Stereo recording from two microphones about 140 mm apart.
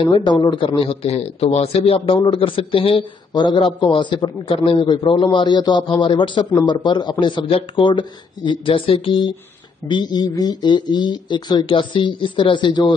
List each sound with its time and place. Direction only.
0.0 s speech: 35° left (ahead or behind)